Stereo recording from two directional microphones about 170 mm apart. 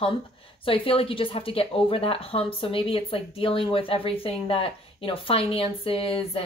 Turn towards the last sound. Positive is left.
turn(degrees=35)  # may be behind; listen again after turning